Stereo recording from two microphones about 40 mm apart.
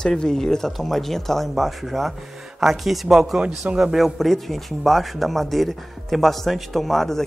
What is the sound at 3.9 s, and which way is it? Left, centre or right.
Speech, centre.